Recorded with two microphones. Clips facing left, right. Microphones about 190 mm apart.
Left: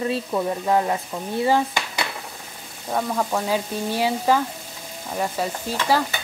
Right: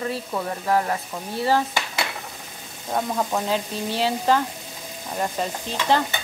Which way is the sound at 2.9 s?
5° right (ahead or behind).